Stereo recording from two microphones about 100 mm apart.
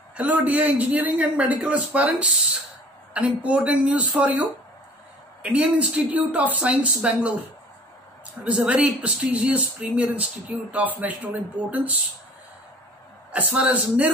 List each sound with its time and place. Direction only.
0.1 s speech: 15° right (ahead or behind)
8.5 s speech: 15° right (ahead or behind)
13.3 s speech: 15° right (ahead or behind)